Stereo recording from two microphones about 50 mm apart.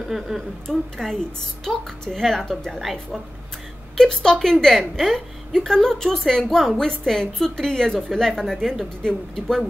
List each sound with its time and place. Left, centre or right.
0.3 s speech: centre
0.7 s a woman's voice: centre